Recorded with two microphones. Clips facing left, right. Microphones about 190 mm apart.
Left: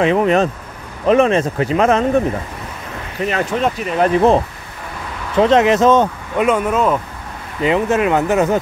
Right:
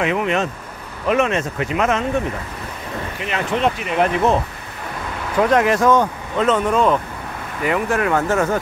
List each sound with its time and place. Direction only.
0.0 s speech: 35° left (ahead or behind)
3.2 s speech: 40° left (ahead or behind)
5.4 s speech: 25° left (ahead or behind)
6.4 s speech: 10° left (ahead or behind)
7.6 s speech: 20° left (ahead or behind)